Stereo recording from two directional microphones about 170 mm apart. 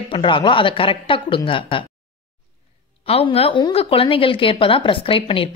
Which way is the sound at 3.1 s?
35° left (ahead or behind).